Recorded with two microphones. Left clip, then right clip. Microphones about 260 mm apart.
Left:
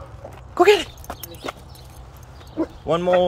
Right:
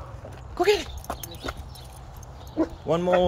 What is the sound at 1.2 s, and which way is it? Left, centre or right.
Horse, centre.